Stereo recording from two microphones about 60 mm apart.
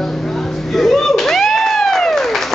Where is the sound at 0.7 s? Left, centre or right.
Centre.